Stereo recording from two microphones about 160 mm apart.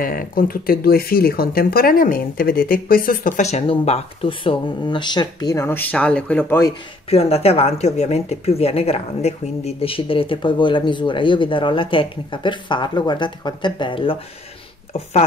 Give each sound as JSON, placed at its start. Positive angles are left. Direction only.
{"t": 0.0, "sound": "speech", "side_deg": 60}
{"t": 7.1, "sound": "speech", "side_deg": 40}